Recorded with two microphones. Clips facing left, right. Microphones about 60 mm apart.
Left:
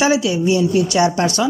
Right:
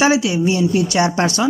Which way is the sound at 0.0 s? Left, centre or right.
Right.